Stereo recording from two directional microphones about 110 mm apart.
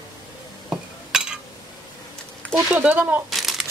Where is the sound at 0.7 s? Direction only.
5° right (ahead or behind).